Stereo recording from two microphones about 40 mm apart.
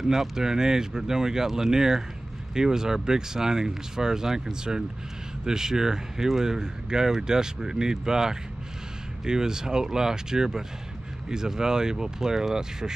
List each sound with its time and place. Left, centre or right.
0.0 s speech: centre